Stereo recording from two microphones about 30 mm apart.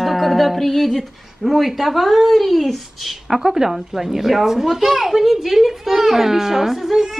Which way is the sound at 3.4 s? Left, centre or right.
Centre.